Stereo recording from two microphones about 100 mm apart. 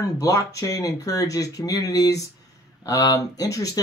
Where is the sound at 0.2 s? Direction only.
35° left (ahead or behind).